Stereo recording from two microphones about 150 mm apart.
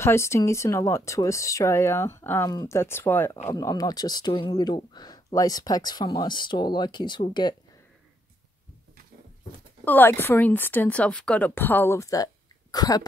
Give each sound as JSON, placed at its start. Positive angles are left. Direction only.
{"t": 0.0, "sound": "speech", "side_deg": 20}
{"t": 9.8, "sound": "speech", "side_deg": 15}